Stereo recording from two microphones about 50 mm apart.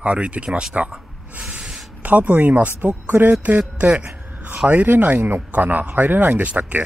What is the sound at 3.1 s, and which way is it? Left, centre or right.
Speech, right.